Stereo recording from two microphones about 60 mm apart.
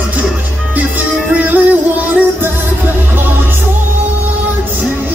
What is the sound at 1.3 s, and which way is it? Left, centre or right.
Music, right.